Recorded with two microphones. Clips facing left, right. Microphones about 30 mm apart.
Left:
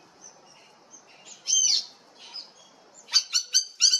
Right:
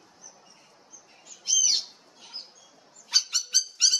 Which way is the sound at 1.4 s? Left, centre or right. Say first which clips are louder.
Even; centre.